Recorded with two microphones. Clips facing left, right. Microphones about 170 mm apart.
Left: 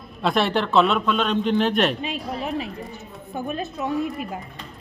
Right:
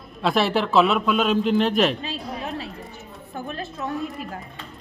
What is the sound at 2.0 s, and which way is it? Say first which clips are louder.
A woman's voice: left 3 dB; 20° left (ahead or behind).